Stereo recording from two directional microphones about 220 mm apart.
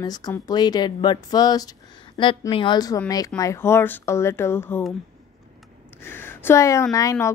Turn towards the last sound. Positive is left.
turn(degrees=15)  # may be behind; listen again after turning